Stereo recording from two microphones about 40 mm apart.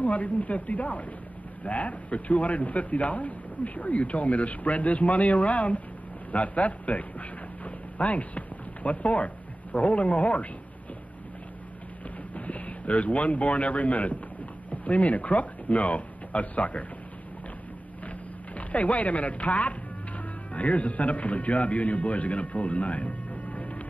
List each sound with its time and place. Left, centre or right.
0.0 s speech: left
12.4 s speech: left
18.6 s speech: left